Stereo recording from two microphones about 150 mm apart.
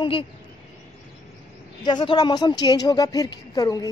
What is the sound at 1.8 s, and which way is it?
A woman's voice, 30° left (ahead or behind).